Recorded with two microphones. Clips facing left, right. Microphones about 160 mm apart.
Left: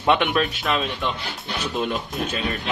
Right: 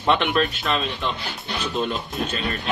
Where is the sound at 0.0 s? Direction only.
10° left (ahead or behind).